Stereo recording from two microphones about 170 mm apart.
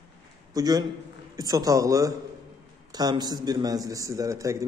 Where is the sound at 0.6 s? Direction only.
20° right (ahead or behind).